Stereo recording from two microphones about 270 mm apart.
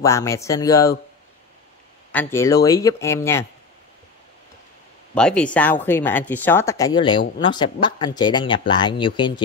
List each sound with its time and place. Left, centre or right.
0.0 s speech: centre
2.1 s speech: centre
5.1 s speech: centre